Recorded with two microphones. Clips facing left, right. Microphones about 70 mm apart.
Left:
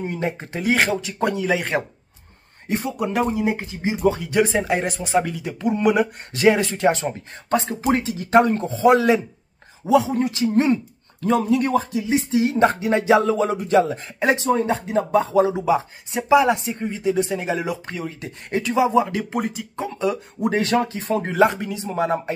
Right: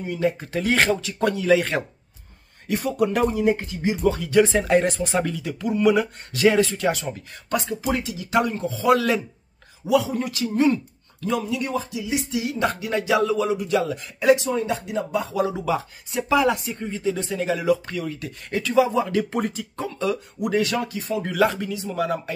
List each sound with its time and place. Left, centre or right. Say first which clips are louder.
0.0 s speech: right 2 dB; left
0.6 s speech: left 1 dB; centre
3.1 s speech: left 2 dB; centre
4.6 s speech: right 3 dB; centre
5.2 s speech: left 2 dB; left
10.6 s a sound: right 3 dB; left
11.3 s speech: left 6 dB; left
19.3 s speech: left 1 dB; centre
19.8 s speech: left 2 dB; left